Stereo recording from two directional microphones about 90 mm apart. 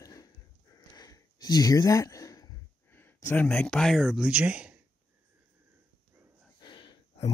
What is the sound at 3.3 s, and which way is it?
Speech, 20° left (ahead or behind).